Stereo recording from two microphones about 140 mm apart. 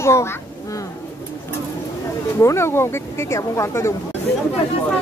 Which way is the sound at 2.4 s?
20° left (ahead or behind).